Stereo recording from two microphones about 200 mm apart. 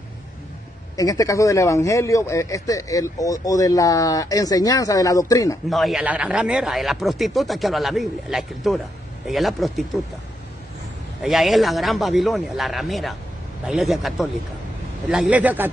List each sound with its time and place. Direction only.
0.9 s speech: 15° left (ahead or behind)
5.7 s speech: centre (ahead or behind)
11.2 s a man's voice: centre (ahead or behind)